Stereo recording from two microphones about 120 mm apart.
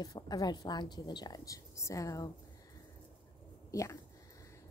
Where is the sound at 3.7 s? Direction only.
25° left (ahead or behind).